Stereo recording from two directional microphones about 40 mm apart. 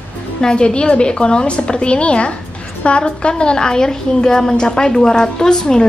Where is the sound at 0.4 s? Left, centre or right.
Left.